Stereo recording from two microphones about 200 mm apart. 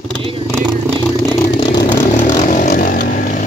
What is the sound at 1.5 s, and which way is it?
Vehicle, 20° left (ahead or behind).